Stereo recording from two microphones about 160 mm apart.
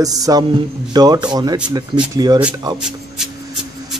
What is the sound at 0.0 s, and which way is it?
Speech, 20° right (ahead or behind).